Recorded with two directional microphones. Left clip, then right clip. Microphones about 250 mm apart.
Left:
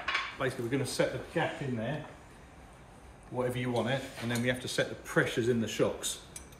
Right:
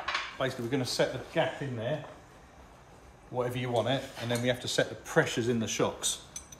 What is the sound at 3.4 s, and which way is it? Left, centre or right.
Speech, right.